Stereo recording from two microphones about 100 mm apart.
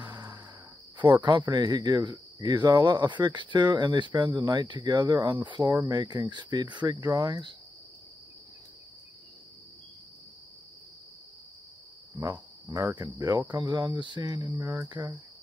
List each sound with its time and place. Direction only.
0.0 s music: 40° right (ahead or behind)
0.9 s speech: 50° right (ahead or behind)
12.9 s speech: 45° right (ahead or behind)
14.2 s cricket: 40° right (ahead or behind)
14.9 s speech: 50° right (ahead or behind)